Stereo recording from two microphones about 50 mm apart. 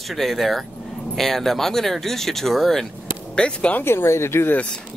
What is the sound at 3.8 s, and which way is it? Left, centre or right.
Speech, left.